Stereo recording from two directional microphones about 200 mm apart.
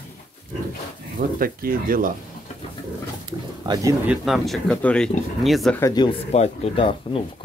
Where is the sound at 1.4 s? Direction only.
45° right (ahead or behind).